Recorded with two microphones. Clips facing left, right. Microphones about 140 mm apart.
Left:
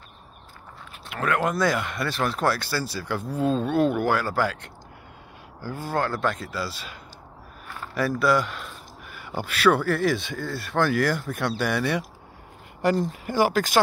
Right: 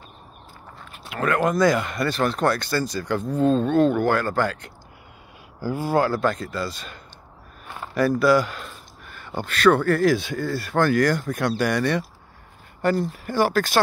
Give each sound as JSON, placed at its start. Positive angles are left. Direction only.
{"t": 1.0, "sound": "speech", "side_deg": 0}
{"t": 5.6, "sound": "speech", "side_deg": -10}
{"t": 8.2, "sound": "speech", "side_deg": 0}
{"t": 12.8, "sound": "speech", "side_deg": 20}